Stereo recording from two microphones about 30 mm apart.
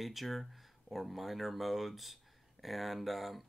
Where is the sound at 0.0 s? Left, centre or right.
Centre.